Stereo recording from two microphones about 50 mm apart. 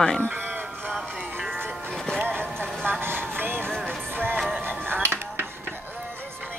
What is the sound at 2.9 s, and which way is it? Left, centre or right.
Vehicle, right.